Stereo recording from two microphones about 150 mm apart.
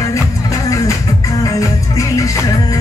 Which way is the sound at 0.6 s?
20° left (ahead or behind).